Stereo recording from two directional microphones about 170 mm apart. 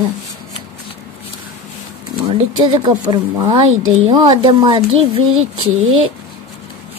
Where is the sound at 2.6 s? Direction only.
25° right (ahead or behind).